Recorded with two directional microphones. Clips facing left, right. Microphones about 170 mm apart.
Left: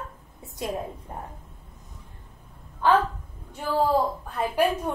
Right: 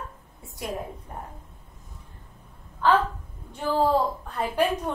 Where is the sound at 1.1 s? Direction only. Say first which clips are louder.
Left 1 dB; 25° left (ahead or behind).